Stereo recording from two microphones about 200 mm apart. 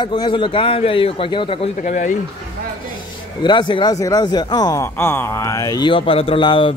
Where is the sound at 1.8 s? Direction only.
40° left (ahead or behind).